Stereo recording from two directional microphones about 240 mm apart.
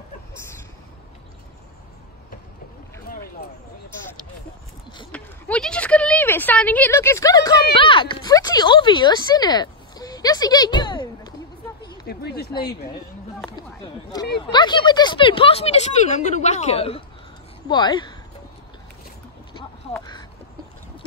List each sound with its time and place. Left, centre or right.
5.1 s a sound: centre
12.1 s speech: left
14.1 s speech: centre